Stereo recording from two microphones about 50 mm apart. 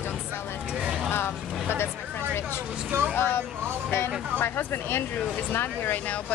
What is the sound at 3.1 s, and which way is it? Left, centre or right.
Speech, left.